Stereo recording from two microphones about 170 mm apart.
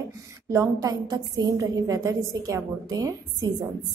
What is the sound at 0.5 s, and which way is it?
A woman's voice, 20° right (ahead or behind).